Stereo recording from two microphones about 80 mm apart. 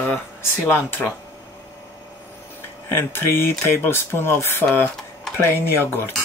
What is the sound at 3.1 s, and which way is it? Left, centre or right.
Speech, left.